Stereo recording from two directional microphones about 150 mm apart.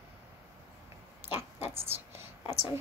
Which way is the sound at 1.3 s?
15° right (ahead or behind).